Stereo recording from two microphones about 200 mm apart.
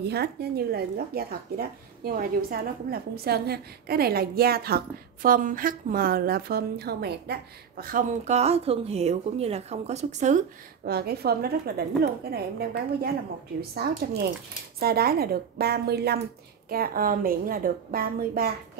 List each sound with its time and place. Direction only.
0.0 s speech: 55° right (ahead or behind); by 10.4 s 35° right (ahead or behind)
10.9 s speech: 50° right (ahead or behind)